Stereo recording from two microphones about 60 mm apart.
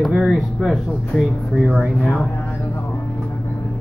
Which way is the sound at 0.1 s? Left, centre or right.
Centre.